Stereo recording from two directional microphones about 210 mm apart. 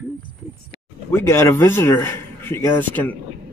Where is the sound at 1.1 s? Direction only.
15° left (ahead or behind).